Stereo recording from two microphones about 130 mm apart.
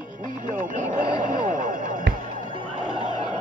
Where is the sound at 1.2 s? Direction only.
80° right.